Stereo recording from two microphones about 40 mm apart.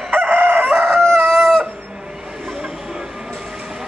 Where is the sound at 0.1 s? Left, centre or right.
Right.